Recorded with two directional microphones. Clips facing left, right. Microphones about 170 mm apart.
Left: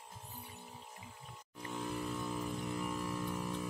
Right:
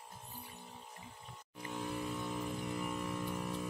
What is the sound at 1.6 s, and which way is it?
Vehicle, centre (ahead or behind).